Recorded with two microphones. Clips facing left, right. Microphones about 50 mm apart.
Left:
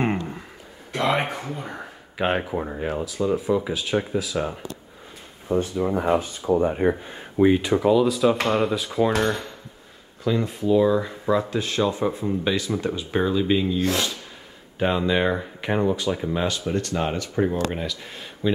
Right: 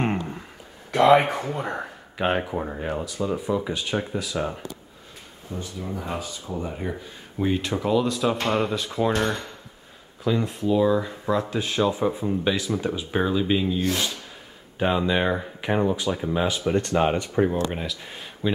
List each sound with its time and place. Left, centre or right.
0.0 s a sound: centre
1.1 s speech: centre
2.1 s speech: centre
5.5 s speech: left
6.1 s speech: left
7.4 s speech: centre
16.4 s speech: centre
17.6 s speech: centre